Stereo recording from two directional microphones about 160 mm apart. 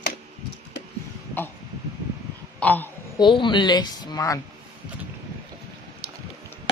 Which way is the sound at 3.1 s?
30° left (ahead or behind).